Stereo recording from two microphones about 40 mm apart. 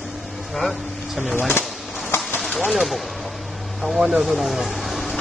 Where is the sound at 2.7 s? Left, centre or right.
Centre.